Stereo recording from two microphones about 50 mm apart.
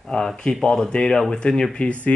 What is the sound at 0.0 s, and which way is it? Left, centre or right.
Speech, centre.